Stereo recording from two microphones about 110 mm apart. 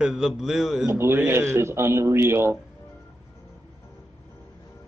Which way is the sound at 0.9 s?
20° right (ahead or behind).